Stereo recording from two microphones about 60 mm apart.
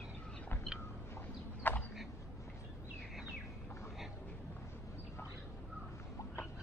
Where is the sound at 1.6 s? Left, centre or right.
Left.